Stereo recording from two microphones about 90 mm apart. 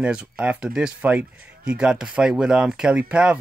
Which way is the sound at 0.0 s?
15° right (ahead or behind).